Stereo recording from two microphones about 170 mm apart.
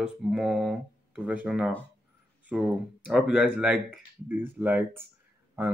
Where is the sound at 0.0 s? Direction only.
Centre (ahead or behind).